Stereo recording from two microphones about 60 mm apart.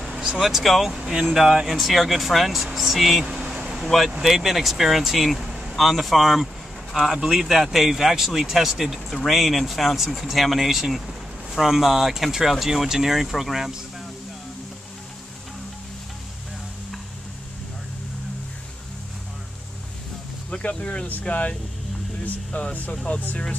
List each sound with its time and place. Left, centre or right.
0.0 s vehicle: centre
0.4 s speech: centre
3.5 s vehicle: centre
4.2 s speech: centre
5.5 s vehicle: centre
5.8 s speech: centre
20.4 s speech: centre